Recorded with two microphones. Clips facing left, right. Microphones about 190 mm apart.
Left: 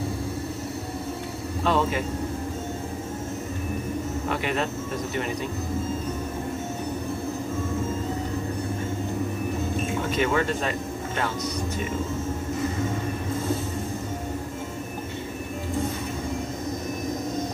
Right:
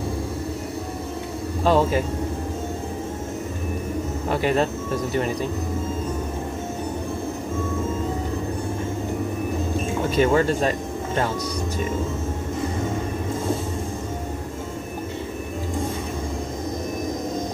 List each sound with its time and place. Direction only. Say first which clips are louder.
1.6 s speech: right 5 dB; 35° right (ahead or behind)
4.3 s speech: right 7 dB; 35° right (ahead or behind)
10.1 s speech: right 6 dB; 35° right (ahead or behind)